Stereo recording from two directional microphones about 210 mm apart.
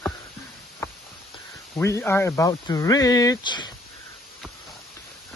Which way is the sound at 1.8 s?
10° left (ahead or behind).